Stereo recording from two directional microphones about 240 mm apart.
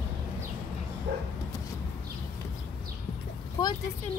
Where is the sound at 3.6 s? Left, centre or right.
Centre.